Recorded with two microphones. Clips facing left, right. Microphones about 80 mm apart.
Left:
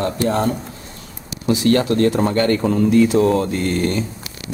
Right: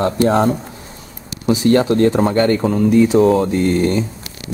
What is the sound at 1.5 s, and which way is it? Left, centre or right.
Speech, right.